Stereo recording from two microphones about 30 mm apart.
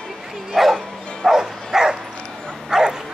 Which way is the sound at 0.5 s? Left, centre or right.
Centre.